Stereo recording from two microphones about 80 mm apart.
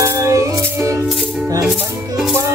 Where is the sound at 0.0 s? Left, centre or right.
Right.